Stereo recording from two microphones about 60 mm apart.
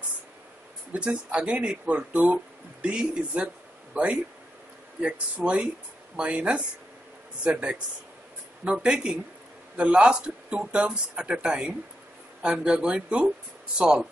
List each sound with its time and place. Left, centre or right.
0.9 s speech: centre